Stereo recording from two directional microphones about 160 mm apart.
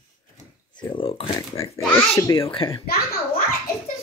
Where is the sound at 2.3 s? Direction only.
35° left (ahead or behind).